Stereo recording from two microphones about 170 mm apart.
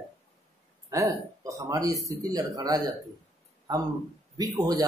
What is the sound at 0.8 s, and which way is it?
Speech, 20° right (ahead or behind).